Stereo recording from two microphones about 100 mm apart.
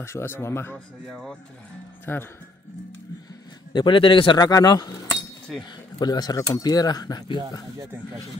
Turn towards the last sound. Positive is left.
turn(degrees=40)  # may be behind; listen again after turning